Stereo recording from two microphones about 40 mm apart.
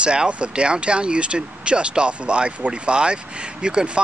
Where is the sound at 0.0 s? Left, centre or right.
Right.